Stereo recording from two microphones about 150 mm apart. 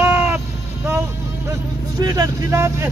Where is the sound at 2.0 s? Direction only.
25° right (ahead or behind).